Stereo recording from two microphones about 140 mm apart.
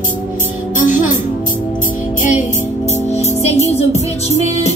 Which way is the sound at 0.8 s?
65° left (ahead or behind).